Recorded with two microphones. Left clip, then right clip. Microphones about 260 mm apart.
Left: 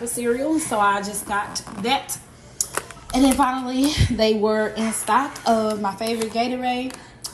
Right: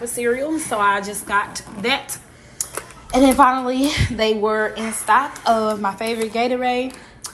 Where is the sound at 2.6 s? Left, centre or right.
Left.